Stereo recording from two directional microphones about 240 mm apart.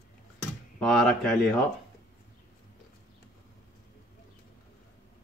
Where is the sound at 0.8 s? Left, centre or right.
Centre.